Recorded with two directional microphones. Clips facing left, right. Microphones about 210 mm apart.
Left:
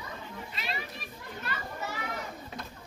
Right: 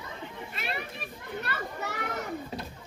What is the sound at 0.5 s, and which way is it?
Children playing, 55° right (ahead or behind).